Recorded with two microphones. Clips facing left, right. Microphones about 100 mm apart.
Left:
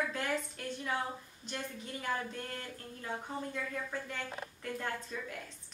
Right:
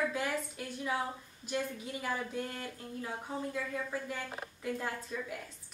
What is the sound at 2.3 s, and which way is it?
Speech, 10° right (ahead or behind).